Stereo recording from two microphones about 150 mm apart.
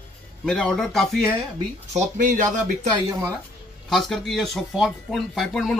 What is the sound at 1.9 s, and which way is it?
Speech, 60° right (ahead or behind).